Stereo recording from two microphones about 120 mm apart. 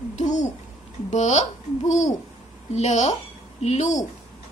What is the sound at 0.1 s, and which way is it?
Babbling, 85° left.